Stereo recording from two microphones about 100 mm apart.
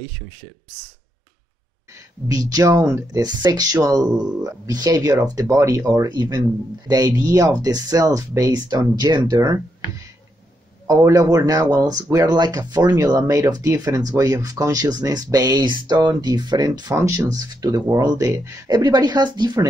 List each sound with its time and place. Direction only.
2.2 s speech: 40° right (ahead or behind)
4.1 s speech: 10° right (ahead or behind)
4.4 s speech: 40° right (ahead or behind)
10.9 s speech: 30° right (ahead or behind)